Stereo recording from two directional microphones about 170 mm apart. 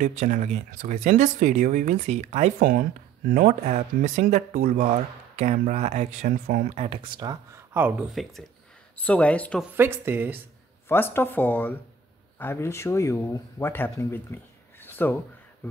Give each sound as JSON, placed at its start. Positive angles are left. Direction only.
{"t": 0.0, "sound": "speech", "side_deg": -45}
{"t": 5.3, "sound": "speech", "side_deg": -40}
{"t": 8.1, "sound": "speech", "side_deg": 0}
{"t": 9.6, "sound": "speech", "side_deg": -15}
{"t": 10.9, "sound": "speech", "side_deg": 15}